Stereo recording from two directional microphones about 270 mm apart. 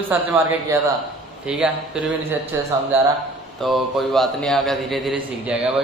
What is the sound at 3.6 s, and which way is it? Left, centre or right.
A man's voice, centre.